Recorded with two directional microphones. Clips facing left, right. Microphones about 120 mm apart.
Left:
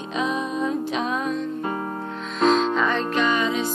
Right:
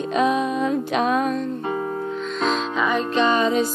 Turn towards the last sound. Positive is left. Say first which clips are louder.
# right 3 dB
turn(degrees=-40)  # may be behind; listen again after turning